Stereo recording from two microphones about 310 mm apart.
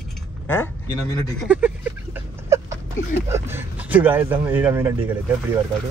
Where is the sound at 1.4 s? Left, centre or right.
Centre.